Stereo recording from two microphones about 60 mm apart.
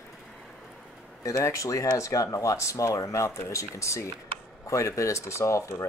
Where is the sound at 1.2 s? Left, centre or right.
Left.